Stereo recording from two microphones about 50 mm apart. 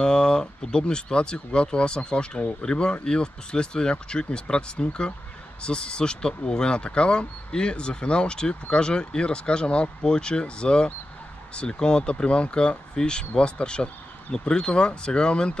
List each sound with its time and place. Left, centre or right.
0.0 s speech: centre